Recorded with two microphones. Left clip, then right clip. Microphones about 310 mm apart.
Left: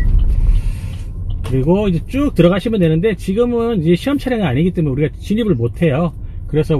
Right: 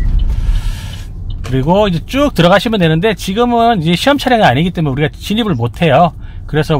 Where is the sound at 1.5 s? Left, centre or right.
Right.